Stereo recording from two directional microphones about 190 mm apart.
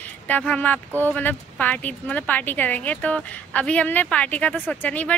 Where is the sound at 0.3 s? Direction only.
5° left (ahead or behind).